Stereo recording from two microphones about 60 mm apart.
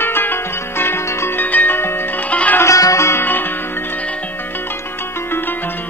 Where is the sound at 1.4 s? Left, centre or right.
Left.